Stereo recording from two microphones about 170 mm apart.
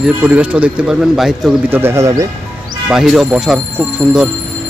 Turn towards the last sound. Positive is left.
turn(degrees=-5)  # may be behind; listen again after turning